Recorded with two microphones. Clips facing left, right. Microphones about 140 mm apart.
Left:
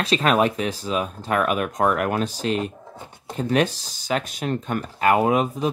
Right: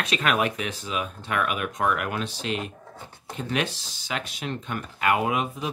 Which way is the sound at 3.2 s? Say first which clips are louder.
Left 7 dB; 40° left (ahead or behind).